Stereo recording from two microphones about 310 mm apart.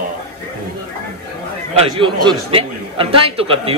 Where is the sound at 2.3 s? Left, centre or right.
Centre.